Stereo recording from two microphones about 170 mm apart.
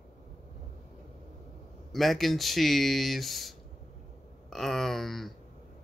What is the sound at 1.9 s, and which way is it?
Speech, centre (ahead or behind).